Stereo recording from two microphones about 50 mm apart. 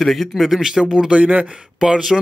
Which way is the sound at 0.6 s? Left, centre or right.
Centre.